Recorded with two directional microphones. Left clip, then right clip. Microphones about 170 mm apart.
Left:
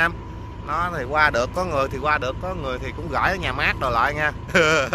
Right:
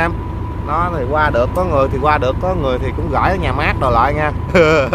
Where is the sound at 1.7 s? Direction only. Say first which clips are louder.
Right 7 dB; 5° right (ahead or behind).